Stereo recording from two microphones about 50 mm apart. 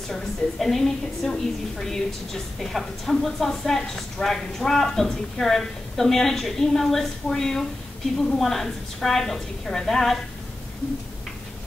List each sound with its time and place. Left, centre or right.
0.1 s a woman's voice: centre